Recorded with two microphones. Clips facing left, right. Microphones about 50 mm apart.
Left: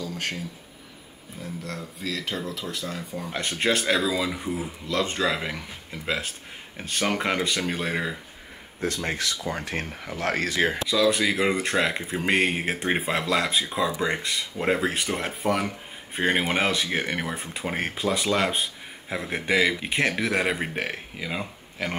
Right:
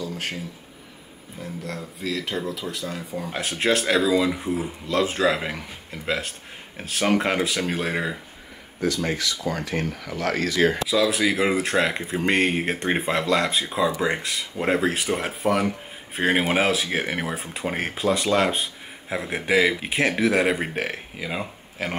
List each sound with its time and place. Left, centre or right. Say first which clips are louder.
0.0 s a sound: right 1 dB; centre
1.4 s speech: right 2 dB; centre
9.5 s speech: right 3 dB; left
10.9 s speech: right 1 dB; centre